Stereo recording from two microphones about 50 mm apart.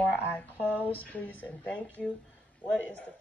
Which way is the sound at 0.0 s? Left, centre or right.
Left.